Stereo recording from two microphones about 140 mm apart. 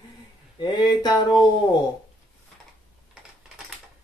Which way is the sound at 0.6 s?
30° left (ahead or behind).